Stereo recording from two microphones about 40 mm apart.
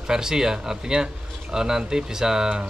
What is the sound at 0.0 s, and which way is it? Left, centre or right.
A man's voice, centre.